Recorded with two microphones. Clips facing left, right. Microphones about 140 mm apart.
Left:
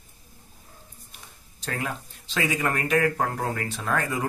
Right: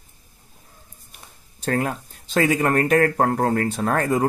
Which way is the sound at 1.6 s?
45° right (ahead or behind).